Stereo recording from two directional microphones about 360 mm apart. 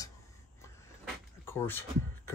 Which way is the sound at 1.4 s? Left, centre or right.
Centre.